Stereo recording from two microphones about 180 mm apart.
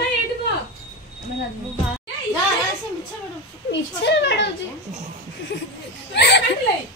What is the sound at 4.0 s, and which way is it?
Speech, 75° left (ahead or behind).